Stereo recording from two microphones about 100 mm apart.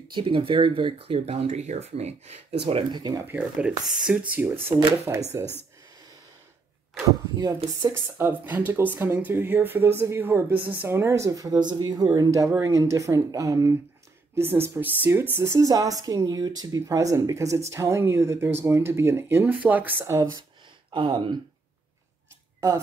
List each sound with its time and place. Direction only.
0.1 s speech: 65° right (ahead or behind); by 2.8 s 90° right
2.9 s speech: 45° right (ahead or behind)
3.3 s speech: 15° right (ahead or behind)
4.3 s speech: 15° right (ahead or behind)
4.9 s speech: 30° right (ahead or behind)
7.1 s speech: 40° right (ahead or behind)
7.9 s speech: 20° right (ahead or behind)
15.3 s speech: 30° right (ahead or behind)
20.9 s speech: 55° right (ahead or behind)